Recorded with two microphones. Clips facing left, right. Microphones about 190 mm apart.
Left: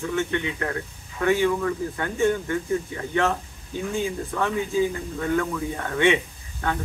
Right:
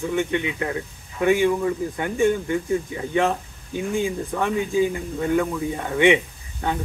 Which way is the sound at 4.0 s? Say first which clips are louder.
Right 2 dB; 15° right (ahead or behind).